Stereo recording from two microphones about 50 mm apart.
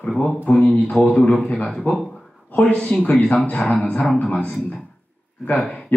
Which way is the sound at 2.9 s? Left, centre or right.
Left.